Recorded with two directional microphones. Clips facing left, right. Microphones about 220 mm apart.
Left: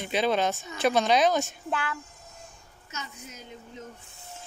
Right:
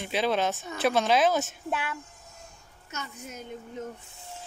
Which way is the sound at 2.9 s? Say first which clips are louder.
Right 3 dB; 55° right (ahead or behind).